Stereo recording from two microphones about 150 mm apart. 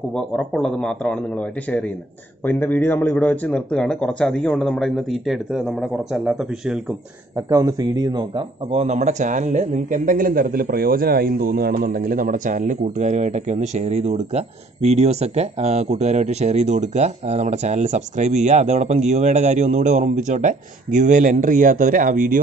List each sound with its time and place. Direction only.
0.1 s speech: 5° left (ahead or behind)
7.3 s speech: 20° right (ahead or behind)
8.7 s speech: 50° right (ahead or behind)